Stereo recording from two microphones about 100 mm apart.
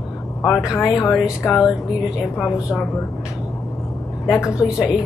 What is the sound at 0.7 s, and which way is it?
Speech, 25° left (ahead or behind).